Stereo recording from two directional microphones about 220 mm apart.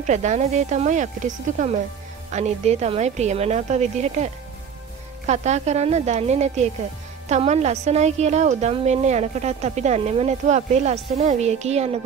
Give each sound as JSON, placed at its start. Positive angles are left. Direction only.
{"t": 0.0, "sound": "a woman's voice", "side_deg": -30}